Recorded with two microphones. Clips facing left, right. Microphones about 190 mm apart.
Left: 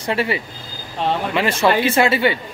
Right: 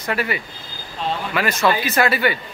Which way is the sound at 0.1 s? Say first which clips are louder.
Left 3 dB; 30° left (ahead or behind).